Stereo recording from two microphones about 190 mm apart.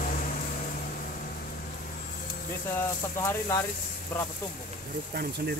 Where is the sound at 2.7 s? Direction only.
15° left (ahead or behind).